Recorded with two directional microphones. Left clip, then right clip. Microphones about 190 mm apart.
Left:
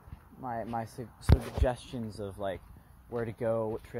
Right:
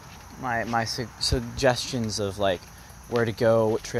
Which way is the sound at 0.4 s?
15° left (ahead or behind).